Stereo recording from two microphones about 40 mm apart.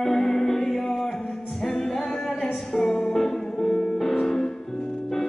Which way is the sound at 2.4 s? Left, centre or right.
Left.